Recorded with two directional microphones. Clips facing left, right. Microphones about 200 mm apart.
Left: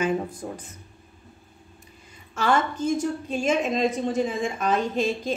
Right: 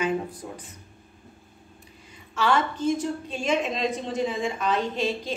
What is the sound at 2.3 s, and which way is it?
Speech, 45° left (ahead or behind).